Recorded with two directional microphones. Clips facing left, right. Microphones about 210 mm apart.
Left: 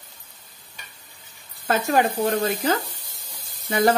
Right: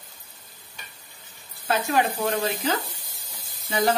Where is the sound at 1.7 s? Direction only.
45° left (ahead or behind).